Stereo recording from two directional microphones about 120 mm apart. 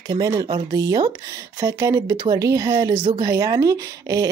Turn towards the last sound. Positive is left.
turn(degrees=-30)  # may be behind; listen again after turning